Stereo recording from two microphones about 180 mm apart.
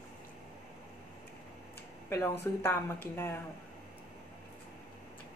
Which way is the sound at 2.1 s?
15° left (ahead or behind).